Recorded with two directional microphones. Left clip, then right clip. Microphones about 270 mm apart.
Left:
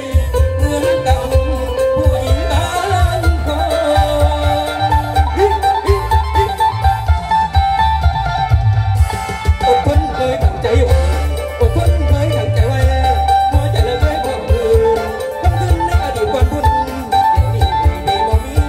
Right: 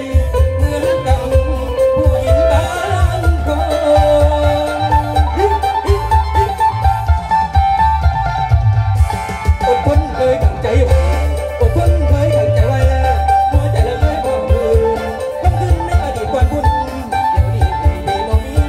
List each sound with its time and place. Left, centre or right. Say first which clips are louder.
0.7 s music: left 1 dB; left
9.6 s music: left 1 dB; left
12.2 s music: right 6 dB; left
16.3 s music: even; left